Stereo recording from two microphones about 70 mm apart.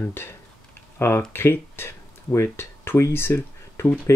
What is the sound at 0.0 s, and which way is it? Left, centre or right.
Speech, left.